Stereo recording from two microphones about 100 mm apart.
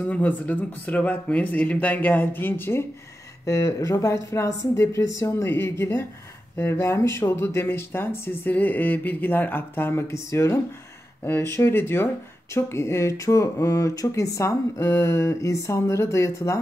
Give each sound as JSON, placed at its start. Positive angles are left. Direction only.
{"t": 0.1, "sound": "speech", "side_deg": 15}